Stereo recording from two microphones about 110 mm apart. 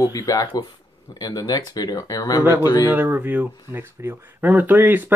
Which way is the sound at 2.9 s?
15° right (ahead or behind).